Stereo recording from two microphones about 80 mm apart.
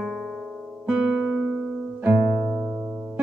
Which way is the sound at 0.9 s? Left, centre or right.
Centre.